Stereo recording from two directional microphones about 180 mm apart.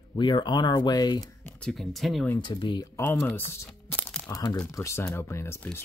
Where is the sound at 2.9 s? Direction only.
10° left (ahead or behind).